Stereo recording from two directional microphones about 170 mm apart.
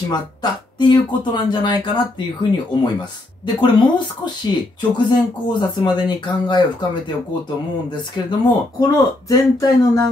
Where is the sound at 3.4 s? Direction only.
25° left (ahead or behind).